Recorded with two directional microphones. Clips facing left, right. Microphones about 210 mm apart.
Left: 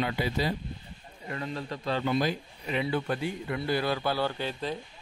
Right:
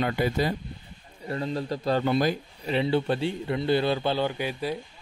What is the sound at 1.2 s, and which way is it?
Speech, 35° right (ahead or behind).